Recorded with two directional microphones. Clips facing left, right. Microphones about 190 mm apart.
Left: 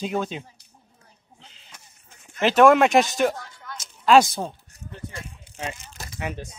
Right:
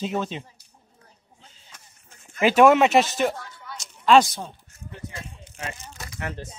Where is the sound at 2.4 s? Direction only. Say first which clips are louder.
Even; 5° right (ahead or behind).